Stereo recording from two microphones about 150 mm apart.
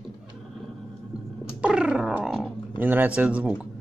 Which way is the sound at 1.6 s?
5° right (ahead or behind).